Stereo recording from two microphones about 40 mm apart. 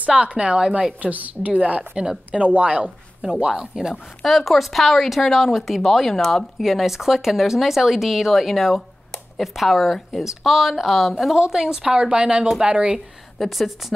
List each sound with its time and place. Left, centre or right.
0.0 s speech: right
3.4 s speech: centre
4.2 s speech: centre
6.6 s speech: centre
11.3 s speech: centre
13.4 s speech: centre